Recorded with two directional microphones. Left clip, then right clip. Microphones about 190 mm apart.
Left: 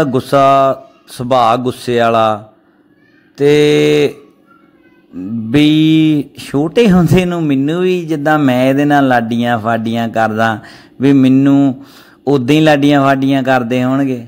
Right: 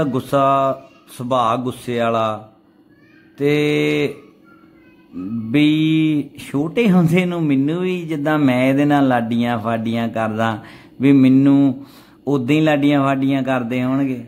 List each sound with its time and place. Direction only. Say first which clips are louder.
0.0 s speech: left 7 dB; 20° left (ahead or behind)
5.5 s speech: left 6 dB; 20° left (ahead or behind)
12.3 s speech: left 7 dB; 25° left (ahead or behind)